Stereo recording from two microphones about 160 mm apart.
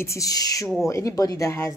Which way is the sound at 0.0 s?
20° left (ahead or behind).